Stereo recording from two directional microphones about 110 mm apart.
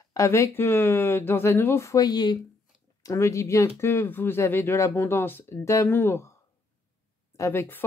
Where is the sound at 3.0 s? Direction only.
30° left (ahead or behind).